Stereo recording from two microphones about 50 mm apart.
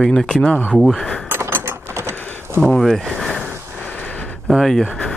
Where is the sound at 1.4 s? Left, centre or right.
Right.